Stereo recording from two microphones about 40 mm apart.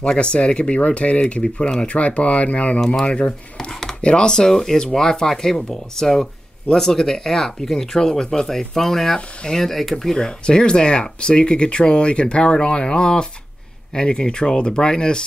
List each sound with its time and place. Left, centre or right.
0.0 s speech: left
1.4 s speech: centre
1.9 s speech: left; by 10.1 s centre
10.1 s speech: left